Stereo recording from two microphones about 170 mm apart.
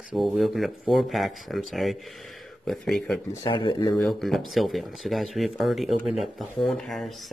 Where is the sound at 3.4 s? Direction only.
30° left (ahead or behind).